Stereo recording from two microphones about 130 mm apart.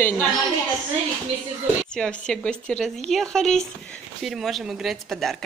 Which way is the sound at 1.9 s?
5° left (ahead or behind).